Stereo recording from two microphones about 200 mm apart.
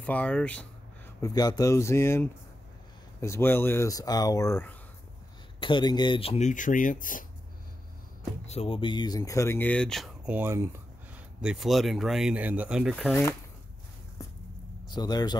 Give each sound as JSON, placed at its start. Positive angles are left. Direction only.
{"t": 0.0, "sound": "speech", "side_deg": 5}
{"t": 1.2, "sound": "speech", "side_deg": 20}
{"t": 5.6, "sound": "speech", "side_deg": 25}
{"t": 8.5, "sound": "speech", "side_deg": 30}
{"t": 11.4, "sound": "speech", "side_deg": 0}
{"t": 15.0, "sound": "speech", "side_deg": 20}